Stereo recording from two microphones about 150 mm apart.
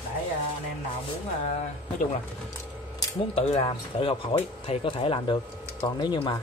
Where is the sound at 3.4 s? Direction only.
40° left (ahead or behind).